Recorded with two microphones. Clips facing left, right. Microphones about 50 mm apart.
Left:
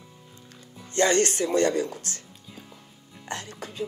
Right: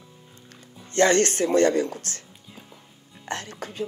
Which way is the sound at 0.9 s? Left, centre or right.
Right.